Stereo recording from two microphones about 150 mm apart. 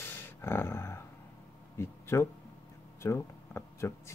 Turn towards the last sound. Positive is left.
turn(degrees=15)  # may be behind; listen again after turning